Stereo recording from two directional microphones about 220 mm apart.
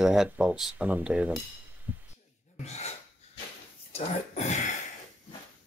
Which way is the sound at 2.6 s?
30° left (ahead or behind).